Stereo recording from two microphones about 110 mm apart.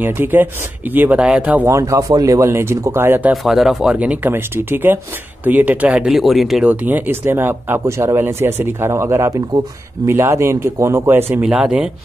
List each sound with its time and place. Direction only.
0.0 s speech: 20° right (ahead or behind)
1.7 s speech: 30° right (ahead or behind)
3.4 s speech: 5° right (ahead or behind)
6.6 s speech: 15° right (ahead or behind)